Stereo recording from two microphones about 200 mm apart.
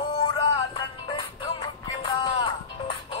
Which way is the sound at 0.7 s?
25° left (ahead or behind).